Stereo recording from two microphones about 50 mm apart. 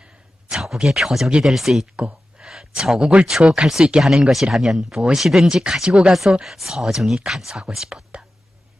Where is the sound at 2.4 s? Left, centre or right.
Centre.